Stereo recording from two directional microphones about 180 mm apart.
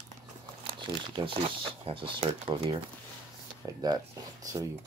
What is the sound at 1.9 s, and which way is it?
Speech, 30° right (ahead or behind).